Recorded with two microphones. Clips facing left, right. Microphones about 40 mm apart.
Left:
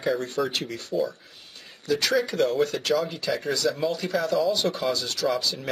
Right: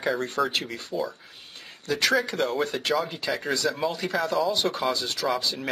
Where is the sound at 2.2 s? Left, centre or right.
Centre.